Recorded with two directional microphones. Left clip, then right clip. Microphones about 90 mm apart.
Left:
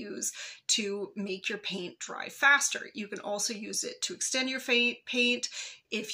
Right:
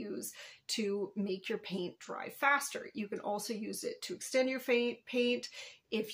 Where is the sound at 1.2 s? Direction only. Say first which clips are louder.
Left 4 dB; 40° right (ahead or behind).